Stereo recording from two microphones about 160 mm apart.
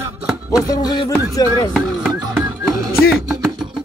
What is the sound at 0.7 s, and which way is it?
Music, 20° left (ahead or behind).